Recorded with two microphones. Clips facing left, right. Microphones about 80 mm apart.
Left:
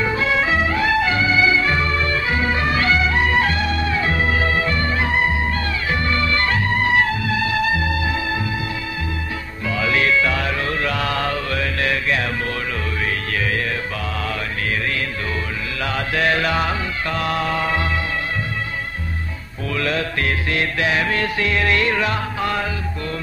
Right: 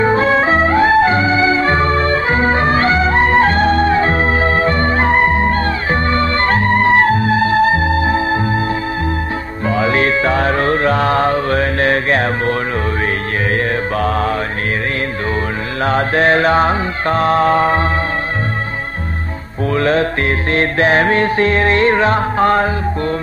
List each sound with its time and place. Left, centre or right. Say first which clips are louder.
0.0 s music: right 7 dB; right
9.7 s music: right 5 dB; right
13.9 s music: right 10 dB; right
15.8 s music: right 8 dB; right
19.7 s music: right 8 dB; right